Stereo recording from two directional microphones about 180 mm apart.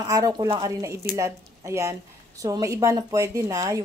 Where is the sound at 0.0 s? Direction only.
20° right (ahead or behind).